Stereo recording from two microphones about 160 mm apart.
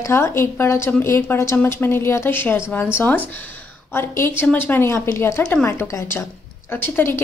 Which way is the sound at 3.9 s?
15° left (ahead or behind).